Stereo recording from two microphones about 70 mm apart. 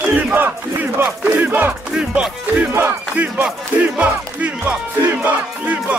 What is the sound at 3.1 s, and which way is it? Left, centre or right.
Music, right.